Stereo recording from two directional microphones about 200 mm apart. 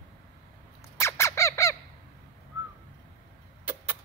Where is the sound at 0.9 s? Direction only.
15° left (ahead or behind).